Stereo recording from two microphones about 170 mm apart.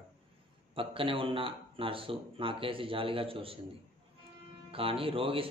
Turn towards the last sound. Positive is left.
turn(degrees=-30)  # may be behind; listen again after turning